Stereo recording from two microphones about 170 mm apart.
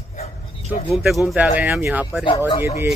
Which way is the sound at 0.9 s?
Centre (ahead or behind).